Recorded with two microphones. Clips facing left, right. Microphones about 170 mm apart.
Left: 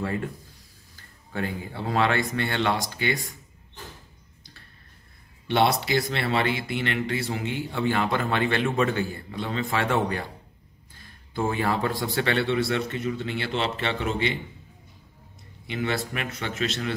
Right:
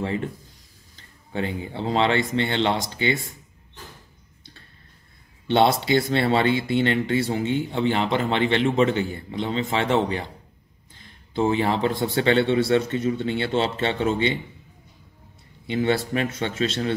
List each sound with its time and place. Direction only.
0.0 s speech: 20° right (ahead or behind)
5.5 s speech: 25° right (ahead or behind)
15.6 s speech: 30° right (ahead or behind)